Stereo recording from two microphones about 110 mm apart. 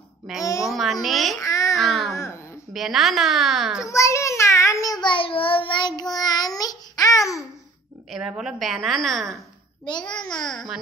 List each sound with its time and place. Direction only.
0.4 s a child's voice: 30° left (ahead or behind)
0.7 s a woman's voice: centre (ahead or behind)
1.4 s babbling: 30° left (ahead or behind)
1.8 s baby cry: centre (ahead or behind)
2.1 s a sound: 25° left (ahead or behind)
2.7 s a woman's voice: centre (ahead or behind)
3.8 s child singing: 30° left (ahead or behind)
8.1 s a woman's voice: 5° right (ahead or behind)